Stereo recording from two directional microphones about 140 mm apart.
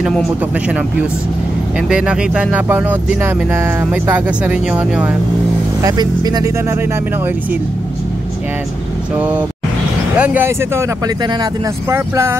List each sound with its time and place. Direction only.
1.8 s speech: 5° right (ahead or behind)
5.8 s speech: 25° right (ahead or behind)
9.1 s speech: 10° right (ahead or behind)
11.9 s speech: 20° right (ahead or behind)